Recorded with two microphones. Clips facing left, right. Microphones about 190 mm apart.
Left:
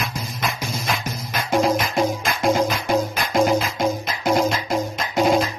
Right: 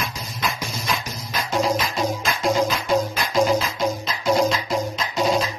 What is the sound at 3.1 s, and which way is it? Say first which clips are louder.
Music: left 1 dB; 55° left (ahead or behind).